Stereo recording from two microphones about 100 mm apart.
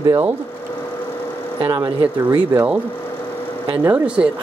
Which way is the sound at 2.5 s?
15° right (ahead or behind).